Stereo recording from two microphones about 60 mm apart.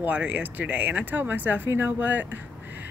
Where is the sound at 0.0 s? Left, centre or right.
Right.